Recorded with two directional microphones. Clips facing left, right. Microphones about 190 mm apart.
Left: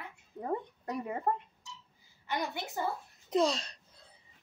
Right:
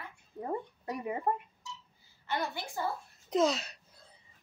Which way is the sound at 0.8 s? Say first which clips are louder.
Even; 10° right (ahead or behind).